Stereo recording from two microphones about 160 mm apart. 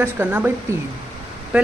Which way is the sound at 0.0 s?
10° right (ahead or behind).